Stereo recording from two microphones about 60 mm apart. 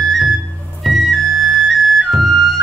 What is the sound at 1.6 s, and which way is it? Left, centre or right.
Flute, centre.